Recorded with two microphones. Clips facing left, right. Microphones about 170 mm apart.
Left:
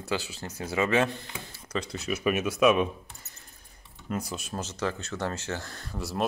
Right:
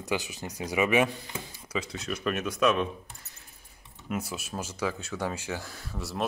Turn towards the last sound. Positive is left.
turn(degrees=0)  # may be behind; listen again after turning